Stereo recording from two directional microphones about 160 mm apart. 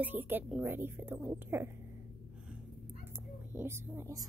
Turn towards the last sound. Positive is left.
turn(degrees=-20)  # may be behind; listen again after turning